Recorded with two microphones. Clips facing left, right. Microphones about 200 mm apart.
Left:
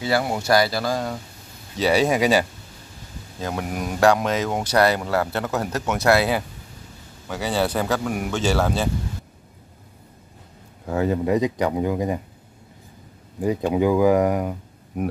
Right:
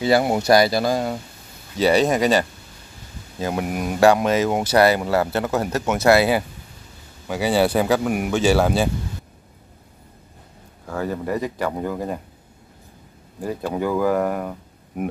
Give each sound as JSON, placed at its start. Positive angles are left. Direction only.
{"t": 0.0, "sound": "speech", "side_deg": -20}
{"t": 1.8, "sound": "speech", "side_deg": 5}
{"t": 3.3, "sound": "speech", "side_deg": -5}
{"t": 10.9, "sound": "speech", "side_deg": 20}
{"t": 13.4, "sound": "speech", "side_deg": 15}